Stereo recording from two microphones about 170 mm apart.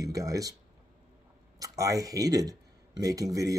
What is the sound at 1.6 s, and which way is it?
A man's voice, 20° right (ahead or behind).